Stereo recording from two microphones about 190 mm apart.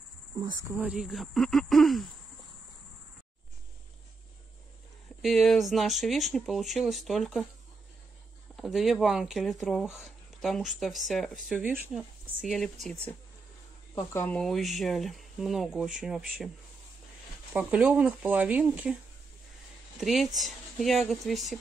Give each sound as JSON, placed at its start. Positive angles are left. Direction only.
{"t": 0.4, "sound": "speech", "side_deg": -20}
{"t": 0.7, "sound": "speech", "side_deg": -5}
{"t": 5.2, "sound": "speech", "side_deg": 0}
{"t": 8.5, "sound": "speech", "side_deg": 0}
{"t": 17.5, "sound": "speech", "side_deg": -5}
{"t": 20.0, "sound": "speech", "side_deg": 0}